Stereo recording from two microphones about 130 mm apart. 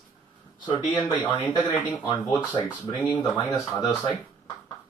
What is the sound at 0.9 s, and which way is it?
Speech, 20° left (ahead or behind).